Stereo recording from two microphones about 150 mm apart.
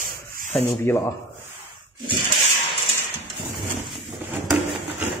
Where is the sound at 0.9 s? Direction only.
15° left (ahead or behind).